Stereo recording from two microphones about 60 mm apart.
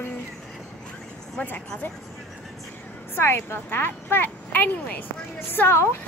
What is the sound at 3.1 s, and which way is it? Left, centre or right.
A woman's voice, left.